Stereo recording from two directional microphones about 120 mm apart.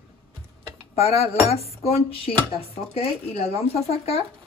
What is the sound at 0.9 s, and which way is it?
Speech, 60° left (ahead or behind).